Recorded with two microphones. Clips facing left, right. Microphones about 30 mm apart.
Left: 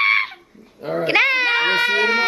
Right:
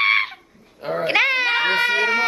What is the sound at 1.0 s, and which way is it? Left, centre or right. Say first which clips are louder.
Baby cry: left 2 dB; centre.